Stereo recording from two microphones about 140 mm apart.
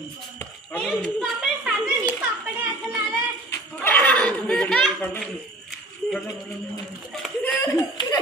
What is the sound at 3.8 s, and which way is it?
Speech, 10° left (ahead or behind).